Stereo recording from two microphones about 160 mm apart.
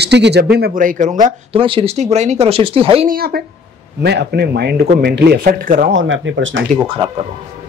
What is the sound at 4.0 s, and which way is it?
Speech, 90° right.